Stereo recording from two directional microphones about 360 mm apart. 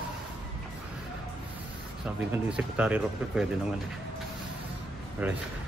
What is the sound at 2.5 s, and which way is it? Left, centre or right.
Speech, centre.